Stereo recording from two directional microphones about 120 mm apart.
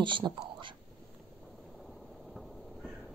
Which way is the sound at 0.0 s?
40° right (ahead or behind).